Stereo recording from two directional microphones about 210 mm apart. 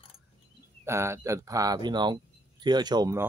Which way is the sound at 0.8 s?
15° right (ahead or behind).